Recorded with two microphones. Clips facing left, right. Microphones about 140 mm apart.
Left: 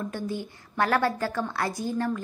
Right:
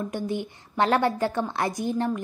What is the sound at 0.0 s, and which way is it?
A woman's voice, 20° right (ahead or behind).